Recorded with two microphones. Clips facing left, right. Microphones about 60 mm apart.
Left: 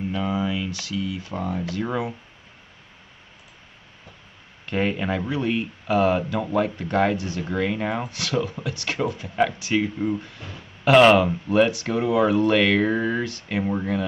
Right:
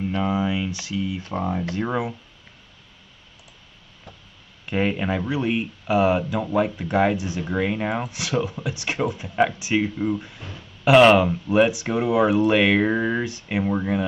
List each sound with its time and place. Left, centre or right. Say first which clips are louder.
0.2 s speech: right 2 dB; centre
4.6 s speech: right 1 dB; centre
10.8 s speech: right 1 dB; centre